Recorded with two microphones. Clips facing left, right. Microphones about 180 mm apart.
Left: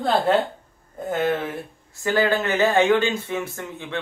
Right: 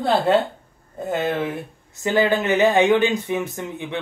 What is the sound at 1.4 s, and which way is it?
Speech, 20° right (ahead or behind).